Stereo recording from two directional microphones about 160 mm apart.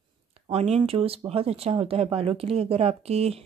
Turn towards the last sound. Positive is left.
turn(degrees=-40)  # may be behind; listen again after turning